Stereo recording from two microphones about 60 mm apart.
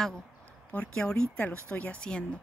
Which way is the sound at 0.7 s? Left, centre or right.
Centre.